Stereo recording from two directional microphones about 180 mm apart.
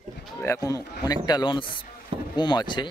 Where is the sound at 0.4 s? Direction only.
15° left (ahead or behind).